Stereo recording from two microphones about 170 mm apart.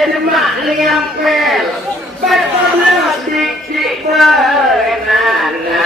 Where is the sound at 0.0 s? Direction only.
Centre (ahead or behind).